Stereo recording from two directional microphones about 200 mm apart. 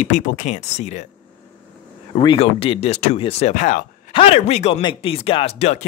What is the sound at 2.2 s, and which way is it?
Speech, 25° left (ahead or behind).